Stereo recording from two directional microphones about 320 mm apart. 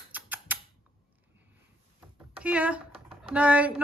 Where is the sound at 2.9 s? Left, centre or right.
Centre.